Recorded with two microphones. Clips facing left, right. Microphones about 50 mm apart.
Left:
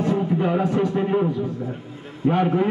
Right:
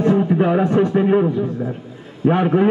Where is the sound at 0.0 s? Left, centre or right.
Right.